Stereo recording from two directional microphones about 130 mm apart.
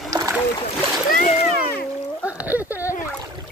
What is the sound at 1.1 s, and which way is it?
Splash, 90° left.